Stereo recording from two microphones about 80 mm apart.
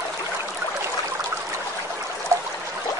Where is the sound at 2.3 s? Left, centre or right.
Right.